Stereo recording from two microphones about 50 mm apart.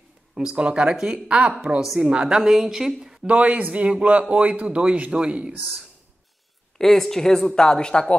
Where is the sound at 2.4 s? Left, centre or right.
Centre.